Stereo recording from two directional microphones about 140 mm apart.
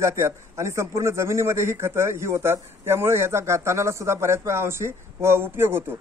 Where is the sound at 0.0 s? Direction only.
20° right (ahead or behind).